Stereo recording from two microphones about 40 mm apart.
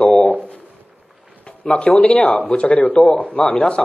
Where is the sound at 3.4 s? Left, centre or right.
Left.